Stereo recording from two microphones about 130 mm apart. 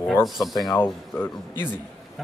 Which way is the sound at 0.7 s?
15° left (ahead or behind).